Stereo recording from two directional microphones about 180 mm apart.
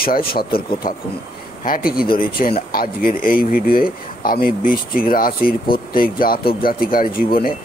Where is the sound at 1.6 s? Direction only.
50° left (ahead or behind).